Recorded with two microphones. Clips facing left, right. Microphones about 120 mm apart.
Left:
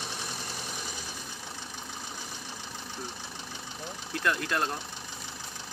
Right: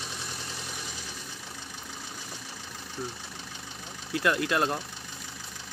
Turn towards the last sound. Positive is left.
turn(degrees=-5)  # may be behind; listen again after turning